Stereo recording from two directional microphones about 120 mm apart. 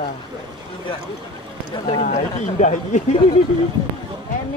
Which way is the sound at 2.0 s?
75° left (ahead or behind).